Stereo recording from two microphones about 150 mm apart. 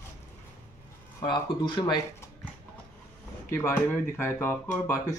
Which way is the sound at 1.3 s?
30° left (ahead or behind).